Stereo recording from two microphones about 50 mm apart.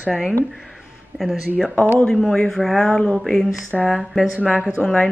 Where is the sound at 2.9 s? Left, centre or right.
Centre.